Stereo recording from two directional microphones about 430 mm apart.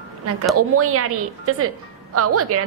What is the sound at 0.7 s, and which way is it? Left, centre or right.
A woman's voice, right.